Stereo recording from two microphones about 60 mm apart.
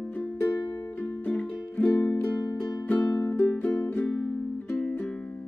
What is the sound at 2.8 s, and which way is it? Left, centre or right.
Music, left.